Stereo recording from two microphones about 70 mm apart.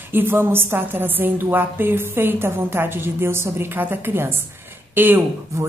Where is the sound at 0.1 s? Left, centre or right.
Right.